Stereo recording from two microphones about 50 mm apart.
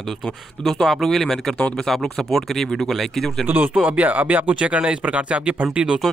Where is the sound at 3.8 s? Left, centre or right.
Right.